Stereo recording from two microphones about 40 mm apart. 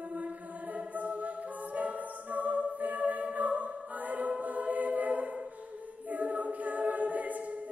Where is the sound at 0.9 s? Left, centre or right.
Right.